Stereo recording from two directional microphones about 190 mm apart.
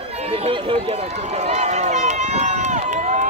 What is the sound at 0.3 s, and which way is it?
Run, 30° right (ahead or behind).